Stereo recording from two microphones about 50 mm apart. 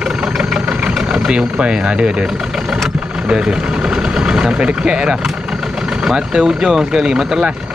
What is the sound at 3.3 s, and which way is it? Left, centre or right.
Speech, centre.